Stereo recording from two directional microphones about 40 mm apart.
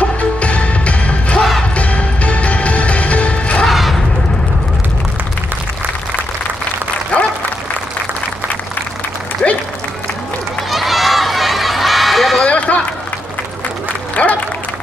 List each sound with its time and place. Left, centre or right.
0.0 s music: left
3.6 s a sound: centre
7.1 s applause: left
9.4 s applause: left
10.7 s run: centre
12.4 s run: left
14.2 s applause: left